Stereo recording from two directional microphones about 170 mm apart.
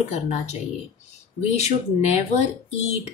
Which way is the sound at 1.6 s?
40° left (ahead or behind).